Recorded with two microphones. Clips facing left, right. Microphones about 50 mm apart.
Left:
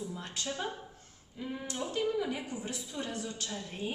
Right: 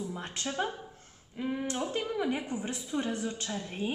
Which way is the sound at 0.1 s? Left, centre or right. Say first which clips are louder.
Right 2 dB; right.